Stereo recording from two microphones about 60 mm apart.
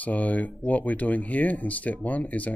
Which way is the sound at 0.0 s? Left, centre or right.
Left.